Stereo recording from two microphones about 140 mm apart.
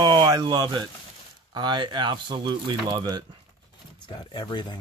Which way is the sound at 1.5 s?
35° right (ahead or behind).